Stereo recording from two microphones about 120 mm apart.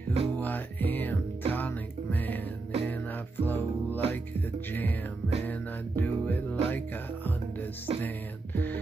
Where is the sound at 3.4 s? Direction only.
15° left (ahead or behind).